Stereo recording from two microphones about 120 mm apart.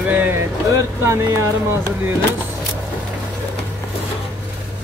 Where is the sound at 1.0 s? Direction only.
25° right (ahead or behind).